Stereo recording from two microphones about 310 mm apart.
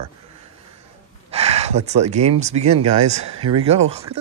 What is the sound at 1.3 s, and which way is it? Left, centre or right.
Speech, centre.